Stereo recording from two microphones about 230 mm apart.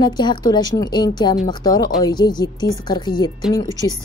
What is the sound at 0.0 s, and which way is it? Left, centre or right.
A woman's voice, centre.